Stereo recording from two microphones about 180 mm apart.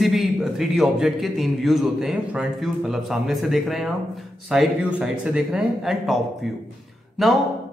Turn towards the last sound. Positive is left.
turn(degrees=0)  # may be behind; listen again after turning